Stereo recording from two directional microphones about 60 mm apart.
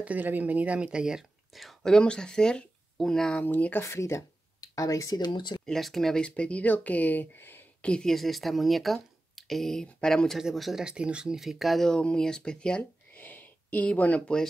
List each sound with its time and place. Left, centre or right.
0.0 s speech: right; by 1.2 s centre
1.5 s speech: centre
3.3 s speech: left
3.8 s speech: left
4.6 s speech: left
5.7 s speech: centre; by 7.6 s left
7.8 s speech: centre
8.1 s speech: centre
10.8 s speech: centre
11.3 s speech: centre
11.9 s speech: centre
13.1 s a sound: left